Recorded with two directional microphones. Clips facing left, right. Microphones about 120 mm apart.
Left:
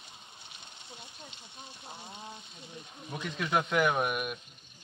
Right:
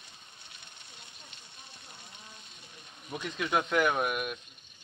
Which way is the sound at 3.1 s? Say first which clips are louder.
Even; centre (ahead or behind).